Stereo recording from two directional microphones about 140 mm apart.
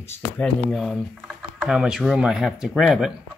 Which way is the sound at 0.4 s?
Centre (ahead or behind).